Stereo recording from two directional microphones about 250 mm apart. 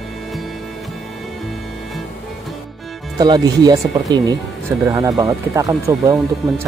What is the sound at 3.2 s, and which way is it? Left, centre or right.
Speech, centre.